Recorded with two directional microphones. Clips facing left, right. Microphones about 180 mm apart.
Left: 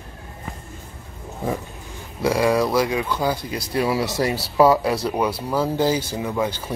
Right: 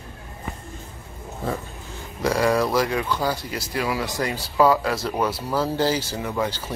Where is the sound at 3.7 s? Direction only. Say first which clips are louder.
Left 4 dB; 30° left (ahead or behind).